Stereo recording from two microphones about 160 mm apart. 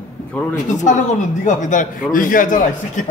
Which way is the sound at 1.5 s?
50° left (ahead or behind).